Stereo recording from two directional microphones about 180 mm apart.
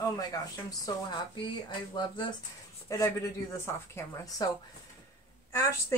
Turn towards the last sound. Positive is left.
turn(degrees=15)  # may be behind; listen again after turning